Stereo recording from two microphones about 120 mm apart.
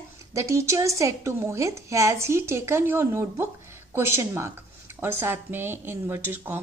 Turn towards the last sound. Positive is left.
turn(degrees=-15)  # may be behind; listen again after turning